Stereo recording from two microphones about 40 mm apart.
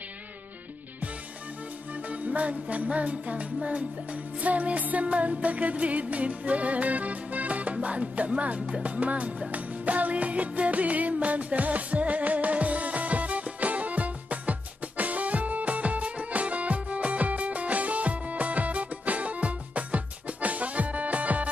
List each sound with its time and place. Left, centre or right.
2.0 s music: right